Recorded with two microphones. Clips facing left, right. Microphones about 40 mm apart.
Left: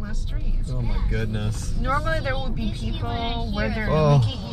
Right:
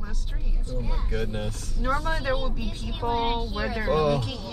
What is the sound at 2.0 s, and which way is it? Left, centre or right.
Speech, centre.